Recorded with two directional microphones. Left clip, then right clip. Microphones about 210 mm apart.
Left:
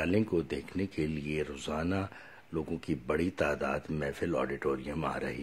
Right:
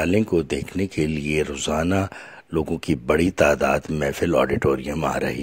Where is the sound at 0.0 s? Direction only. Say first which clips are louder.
Right 10 dB; 40° right (ahead or behind).